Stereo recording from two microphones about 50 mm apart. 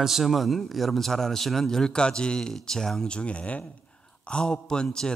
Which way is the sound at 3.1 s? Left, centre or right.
Left.